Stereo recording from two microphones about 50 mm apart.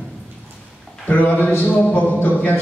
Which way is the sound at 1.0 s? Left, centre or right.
Left.